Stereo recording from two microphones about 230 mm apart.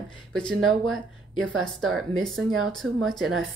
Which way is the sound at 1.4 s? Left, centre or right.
Centre.